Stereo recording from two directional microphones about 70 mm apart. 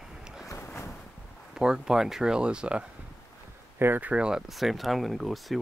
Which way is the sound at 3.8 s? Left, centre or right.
Right.